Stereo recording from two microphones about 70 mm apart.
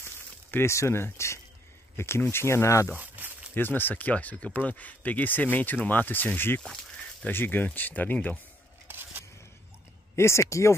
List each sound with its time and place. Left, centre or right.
0.0 s a sound: left
2.0 s speech: left
3.0 s a sound: right
3.5 s speech: left
8.8 s scissors: right
10.1 s speech: left